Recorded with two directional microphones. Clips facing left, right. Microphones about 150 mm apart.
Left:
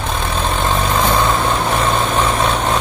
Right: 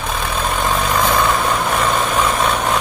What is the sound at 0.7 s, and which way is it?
Vehicle, 30° left (ahead or behind).